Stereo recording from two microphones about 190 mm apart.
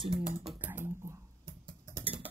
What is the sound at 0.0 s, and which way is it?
Speech, 25° right (ahead or behind).